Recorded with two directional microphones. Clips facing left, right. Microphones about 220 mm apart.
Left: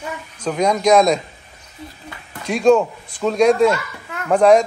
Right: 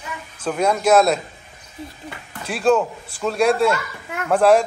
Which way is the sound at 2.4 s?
5° right (ahead or behind).